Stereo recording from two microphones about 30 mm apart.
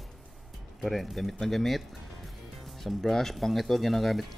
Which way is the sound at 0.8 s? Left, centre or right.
Centre.